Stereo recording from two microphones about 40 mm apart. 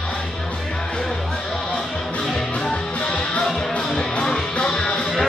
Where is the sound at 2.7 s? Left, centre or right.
Left.